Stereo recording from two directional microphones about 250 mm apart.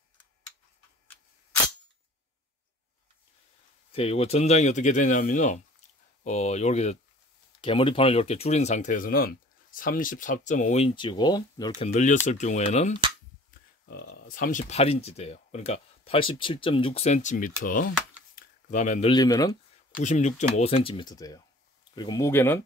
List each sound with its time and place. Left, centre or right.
3.9 s speech: left
11.8 s speech: left
13.5 s speech: left
18.7 s speech: left
20.0 s speech: left; by 22.6 s centre